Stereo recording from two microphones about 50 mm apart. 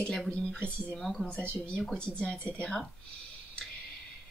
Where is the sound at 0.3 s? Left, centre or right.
Left.